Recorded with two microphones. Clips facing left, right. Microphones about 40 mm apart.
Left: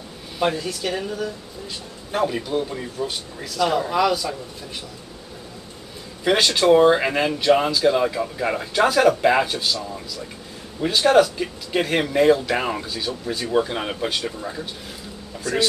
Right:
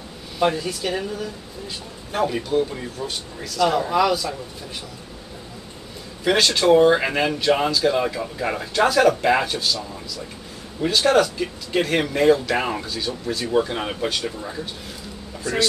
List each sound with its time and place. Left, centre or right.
0.4 s speech: centre
2.1 s speech: centre
6.2 s speech: centre
10.8 s speech: centre
15.5 s speech: centre